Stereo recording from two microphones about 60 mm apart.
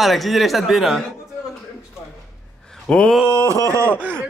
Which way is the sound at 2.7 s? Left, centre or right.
Centre.